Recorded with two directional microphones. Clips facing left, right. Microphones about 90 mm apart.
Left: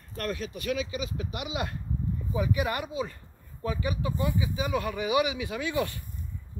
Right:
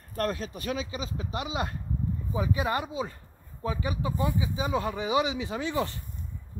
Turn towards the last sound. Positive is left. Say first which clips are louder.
# even
turn(degrees=-25)  # may be behind; listen again after turning